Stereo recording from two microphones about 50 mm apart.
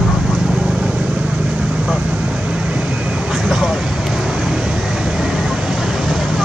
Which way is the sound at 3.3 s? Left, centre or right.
Centre.